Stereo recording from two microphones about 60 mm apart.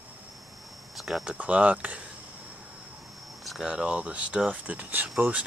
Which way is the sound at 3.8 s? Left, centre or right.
Right.